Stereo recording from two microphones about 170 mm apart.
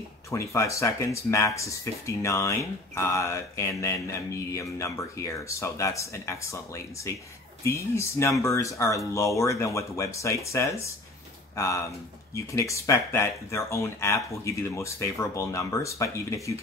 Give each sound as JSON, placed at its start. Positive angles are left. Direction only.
{"t": 0.3, "sound": "speech", "side_deg": 20}